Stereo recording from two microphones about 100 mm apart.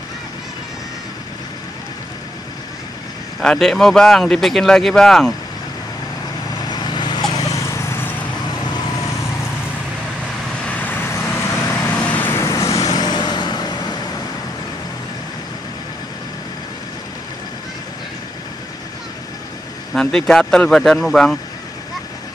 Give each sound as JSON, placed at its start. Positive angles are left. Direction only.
{"t": 3.3, "sound": "speech", "side_deg": 0}
{"t": 6.7, "sound": "vehicle", "side_deg": 45}
{"t": 10.6, "sound": "vehicle", "side_deg": 15}
{"t": 11.9, "sound": "vehicle", "side_deg": 15}
{"t": 12.7, "sound": "vehicle", "side_deg": 40}
{"t": 19.9, "sound": "speech", "side_deg": 5}